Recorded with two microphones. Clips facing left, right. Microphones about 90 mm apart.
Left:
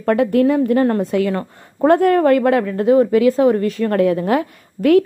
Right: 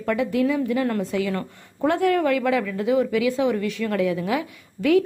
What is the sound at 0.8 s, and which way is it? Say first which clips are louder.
Speech: left 7 dB; 40° left (ahead or behind).